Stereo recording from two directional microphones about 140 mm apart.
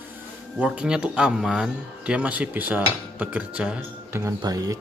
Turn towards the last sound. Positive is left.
turn(degrees=-25)  # may be behind; listen again after turning